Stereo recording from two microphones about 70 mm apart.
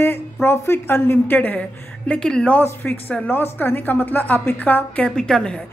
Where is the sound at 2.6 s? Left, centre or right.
Left.